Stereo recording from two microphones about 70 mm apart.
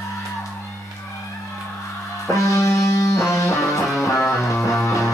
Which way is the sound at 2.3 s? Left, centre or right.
Left.